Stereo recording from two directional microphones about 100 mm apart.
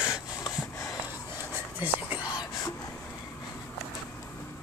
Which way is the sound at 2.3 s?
40° left (ahead or behind).